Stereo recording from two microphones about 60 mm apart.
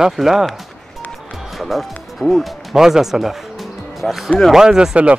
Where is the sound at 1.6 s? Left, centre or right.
Centre.